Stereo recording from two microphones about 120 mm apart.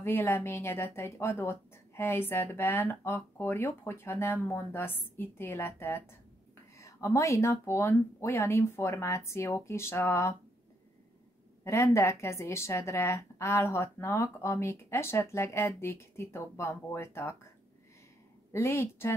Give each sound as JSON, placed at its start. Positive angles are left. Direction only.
{"t": 0.0, "sound": "speech", "side_deg": 20}
{"t": 11.6, "sound": "speech", "side_deg": 25}
{"t": 18.5, "sound": "speech", "side_deg": 25}